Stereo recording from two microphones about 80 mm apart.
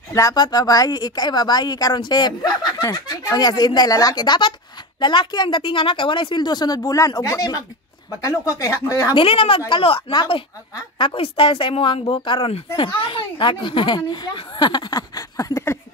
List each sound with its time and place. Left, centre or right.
0.1 s speech: left
0.4 s a child's voice: left
9.7 s a child's voice: left